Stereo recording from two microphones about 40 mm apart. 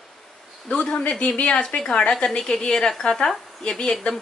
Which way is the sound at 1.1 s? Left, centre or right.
Left.